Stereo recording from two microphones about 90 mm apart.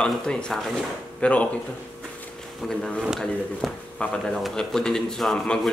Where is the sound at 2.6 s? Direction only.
5° left (ahead or behind).